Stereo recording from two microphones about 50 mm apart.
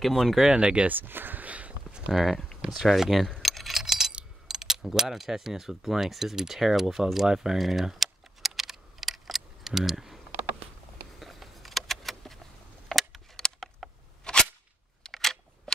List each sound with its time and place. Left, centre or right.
0.0 s speech: centre
0.5 s speech: centre
0.8 s a sound: right
2.1 s speech: centre
3.4 s keys jangling: centre
4.5 s speech: centre
11.1 s keys jangling: centre
12.8 s a sound: centre
14.2 s a sound: centre
15.0 s camera: centre